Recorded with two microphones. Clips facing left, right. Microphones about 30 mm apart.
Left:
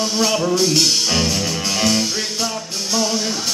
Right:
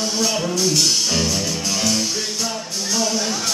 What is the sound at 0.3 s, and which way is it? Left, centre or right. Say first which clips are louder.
Speech: left 4 dB; centre.